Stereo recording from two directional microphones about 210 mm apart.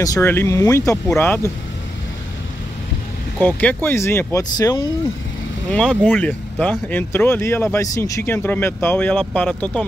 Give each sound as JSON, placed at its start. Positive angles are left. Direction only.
{"t": 0.0, "sound": "speech", "side_deg": 15}
{"t": 3.3, "sound": "speech", "side_deg": 10}
{"t": 5.7, "sound": "speech", "side_deg": 5}